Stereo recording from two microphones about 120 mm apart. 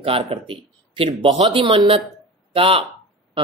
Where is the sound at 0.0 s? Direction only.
50° right (ahead or behind).